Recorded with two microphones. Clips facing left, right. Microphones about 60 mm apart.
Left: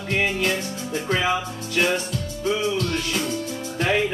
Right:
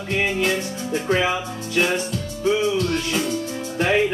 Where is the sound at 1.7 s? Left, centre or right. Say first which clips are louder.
Right 1 dB; right.